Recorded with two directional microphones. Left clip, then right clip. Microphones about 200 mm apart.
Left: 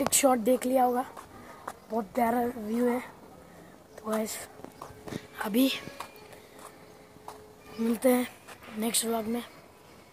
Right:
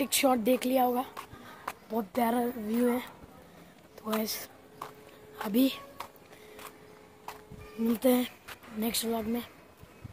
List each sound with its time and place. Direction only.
0.1 s speech: centre (ahead or behind)
8.0 s speech: 15° right (ahead or behind)